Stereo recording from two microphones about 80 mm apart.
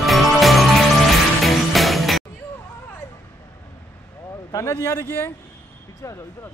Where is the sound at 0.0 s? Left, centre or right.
Centre.